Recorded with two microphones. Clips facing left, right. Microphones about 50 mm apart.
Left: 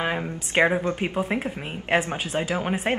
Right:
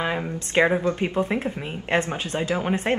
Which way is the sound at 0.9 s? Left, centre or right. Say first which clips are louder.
Right 2 dB; centre.